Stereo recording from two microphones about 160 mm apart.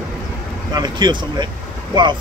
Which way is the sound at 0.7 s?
25° right (ahead or behind).